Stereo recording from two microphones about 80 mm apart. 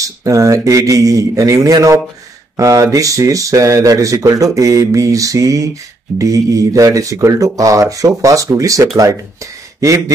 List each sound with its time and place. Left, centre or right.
0.0 s speech: right